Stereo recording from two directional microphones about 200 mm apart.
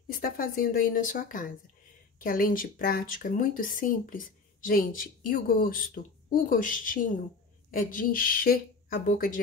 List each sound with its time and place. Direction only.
0.2 s speech: 45° left (ahead or behind)